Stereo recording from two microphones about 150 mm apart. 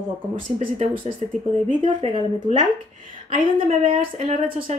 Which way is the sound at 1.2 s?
50° right (ahead or behind).